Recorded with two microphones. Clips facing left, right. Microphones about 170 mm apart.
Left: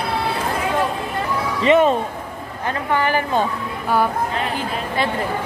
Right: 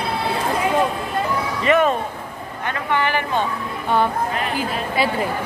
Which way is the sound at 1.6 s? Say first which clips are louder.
Left 3 dB; 30° left (ahead or behind).